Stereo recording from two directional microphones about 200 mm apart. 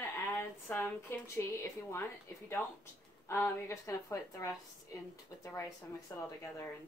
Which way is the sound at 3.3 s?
15° left (ahead or behind).